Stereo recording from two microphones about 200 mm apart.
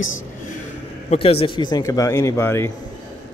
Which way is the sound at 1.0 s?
30° left (ahead or behind).